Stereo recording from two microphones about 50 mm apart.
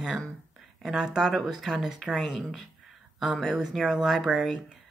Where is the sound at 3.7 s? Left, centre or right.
Centre.